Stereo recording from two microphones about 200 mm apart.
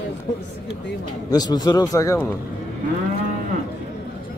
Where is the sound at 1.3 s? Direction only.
20° left (ahead or behind).